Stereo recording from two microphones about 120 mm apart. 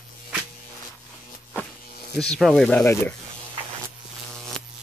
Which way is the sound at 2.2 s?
5° left (ahead or behind).